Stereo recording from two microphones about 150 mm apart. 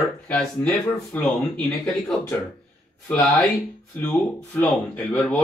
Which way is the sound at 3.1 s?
5° left (ahead or behind).